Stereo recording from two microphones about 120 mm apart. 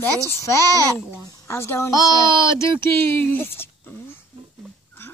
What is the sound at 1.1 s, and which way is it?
Speech, 25° left (ahead or behind).